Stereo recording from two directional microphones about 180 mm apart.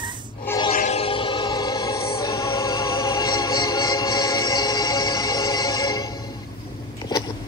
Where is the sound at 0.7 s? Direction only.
35° left (ahead or behind); by 6.0 s 20° left (ahead or behind).